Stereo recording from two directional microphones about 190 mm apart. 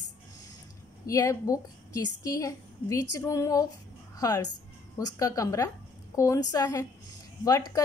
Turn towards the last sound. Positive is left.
turn(degrees=20)  # may be behind; listen again after turning